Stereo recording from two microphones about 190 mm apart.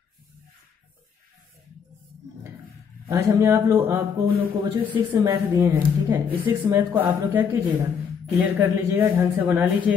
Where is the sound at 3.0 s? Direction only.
15° right (ahead or behind).